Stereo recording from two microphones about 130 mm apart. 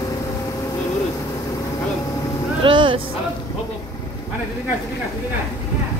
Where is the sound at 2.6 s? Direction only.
40° right (ahead or behind).